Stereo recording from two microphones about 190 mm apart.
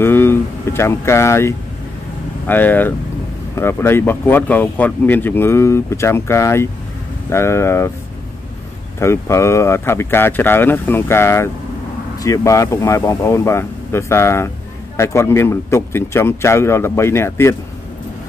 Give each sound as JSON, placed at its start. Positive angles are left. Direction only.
{"t": 0.0, "sound": "speech", "side_deg": 10}
{"t": 9.0, "sound": "speech", "side_deg": 15}